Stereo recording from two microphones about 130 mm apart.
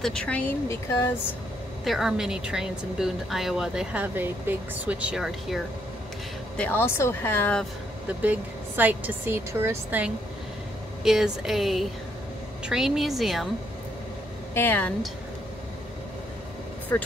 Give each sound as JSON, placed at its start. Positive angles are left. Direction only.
{"t": 0.0, "sound": "speech", "side_deg": 5}
{"t": 1.9, "sound": "speech", "side_deg": -5}
{"t": 6.5, "sound": "speech", "side_deg": 10}
{"t": 8.2, "sound": "speech", "side_deg": -15}
{"t": 11.1, "sound": "speech", "side_deg": 0}
{"t": 14.5, "sound": "speech", "side_deg": 15}
{"t": 16.9, "sound": "speech", "side_deg": 15}